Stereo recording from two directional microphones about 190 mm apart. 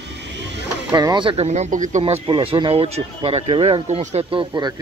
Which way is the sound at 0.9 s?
25° right (ahead or behind).